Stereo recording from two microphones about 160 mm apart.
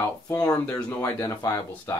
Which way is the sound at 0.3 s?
15° left (ahead or behind).